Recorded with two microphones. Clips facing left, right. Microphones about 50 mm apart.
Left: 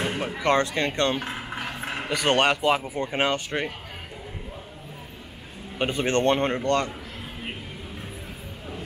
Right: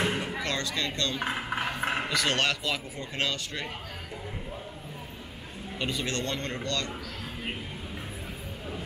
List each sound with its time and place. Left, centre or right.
0.4 s speech: left
1.2 s a sound: centre
2.0 s speech: left
5.8 s a man's voice: left